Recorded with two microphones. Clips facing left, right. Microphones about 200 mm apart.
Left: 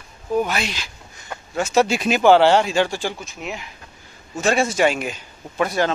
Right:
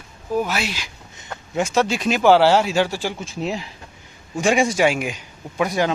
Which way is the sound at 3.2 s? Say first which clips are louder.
Right 6 dB; 30° right (ahead or behind).